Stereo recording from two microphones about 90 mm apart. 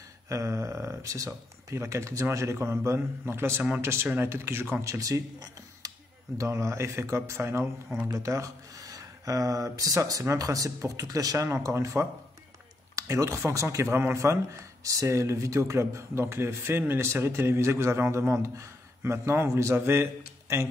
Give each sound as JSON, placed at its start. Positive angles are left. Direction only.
{"t": 0.3, "sound": "speech", "side_deg": -35}
{"t": 4.8, "sound": "speech", "side_deg": -35}
{"t": 11.4, "sound": "speech", "side_deg": -30}
{"t": 12.9, "sound": "a sound", "side_deg": -35}
{"t": 13.5, "sound": "speech", "side_deg": -35}